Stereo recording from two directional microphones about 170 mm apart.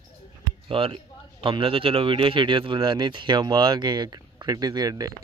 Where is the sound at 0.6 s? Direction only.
30° right (ahead or behind).